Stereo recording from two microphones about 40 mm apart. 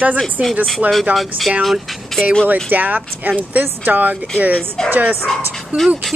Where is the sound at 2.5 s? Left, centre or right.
Right.